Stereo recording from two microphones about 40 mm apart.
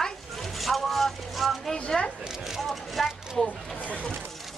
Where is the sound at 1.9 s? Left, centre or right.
Centre.